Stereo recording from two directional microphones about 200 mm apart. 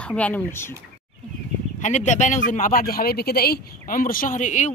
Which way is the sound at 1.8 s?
35° left (ahead or behind).